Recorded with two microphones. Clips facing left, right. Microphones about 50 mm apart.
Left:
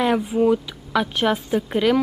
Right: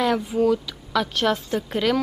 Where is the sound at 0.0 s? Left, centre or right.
Centre.